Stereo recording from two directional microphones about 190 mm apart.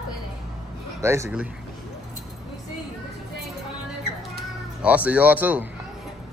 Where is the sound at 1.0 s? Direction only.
15° right (ahead or behind).